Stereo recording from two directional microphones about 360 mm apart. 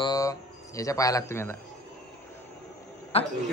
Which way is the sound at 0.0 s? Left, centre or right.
Centre.